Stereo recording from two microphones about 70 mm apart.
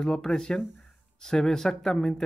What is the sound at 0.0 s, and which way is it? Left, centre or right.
Speech, centre.